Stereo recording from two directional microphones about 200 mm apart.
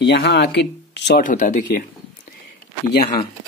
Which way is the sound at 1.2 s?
40° left (ahead or behind).